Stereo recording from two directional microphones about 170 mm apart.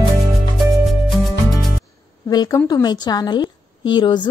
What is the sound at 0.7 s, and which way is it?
Music, centre (ahead or behind).